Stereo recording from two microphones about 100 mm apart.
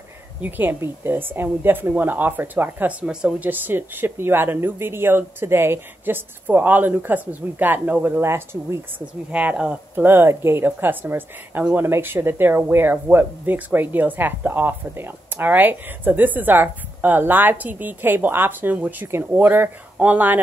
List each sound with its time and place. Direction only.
0.4 s speech: 20° right (ahead or behind)
3.4 s speech: 20° right (ahead or behind)
9.0 s speech: 15° right (ahead or behind)